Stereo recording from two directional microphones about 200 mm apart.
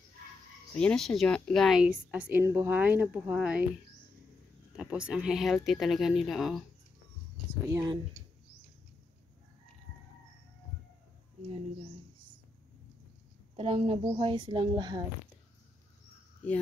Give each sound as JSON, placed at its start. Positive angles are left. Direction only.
{"t": 0.7, "sound": "a woman's voice", "side_deg": 5}
{"t": 4.7, "sound": "a woman's voice", "side_deg": -5}
{"t": 7.6, "sound": "speech", "side_deg": -20}
{"t": 13.6, "sound": "a woman's voice", "side_deg": -30}